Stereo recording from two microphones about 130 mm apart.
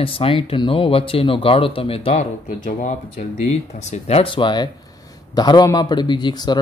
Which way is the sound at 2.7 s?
80° left.